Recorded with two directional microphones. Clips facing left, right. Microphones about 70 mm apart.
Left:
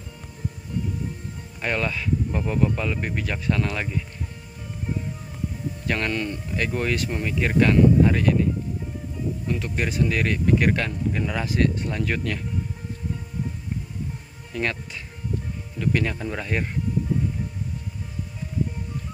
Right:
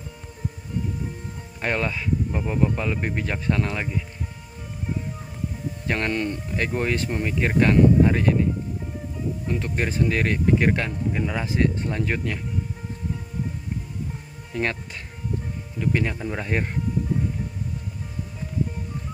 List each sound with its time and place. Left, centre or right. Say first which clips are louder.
1.6 s speech: right 1 dB; right
5.9 s speech: right 1 dB; right
9.5 s speech: right 1 dB; right
14.5 s speech: right 1 dB; right
15.8 s speech: even; centre